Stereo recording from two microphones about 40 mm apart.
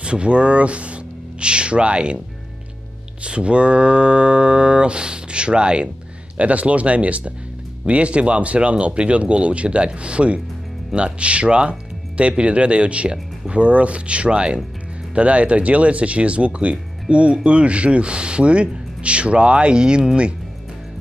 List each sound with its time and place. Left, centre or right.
0.0 s speech: right
3.2 s speech: right
6.3 s speech: right